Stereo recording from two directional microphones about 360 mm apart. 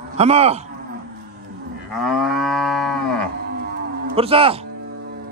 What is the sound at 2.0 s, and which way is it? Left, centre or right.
Livestock, centre.